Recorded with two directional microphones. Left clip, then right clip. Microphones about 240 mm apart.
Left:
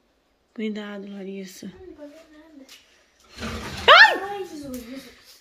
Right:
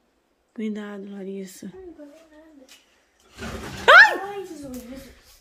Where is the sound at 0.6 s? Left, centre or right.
Centre.